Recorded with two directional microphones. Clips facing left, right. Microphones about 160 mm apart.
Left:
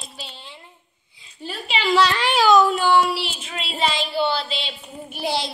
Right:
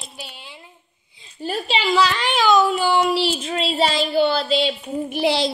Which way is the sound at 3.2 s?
35° right (ahead or behind).